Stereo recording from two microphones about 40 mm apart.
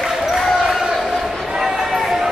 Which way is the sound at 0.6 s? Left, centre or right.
Centre.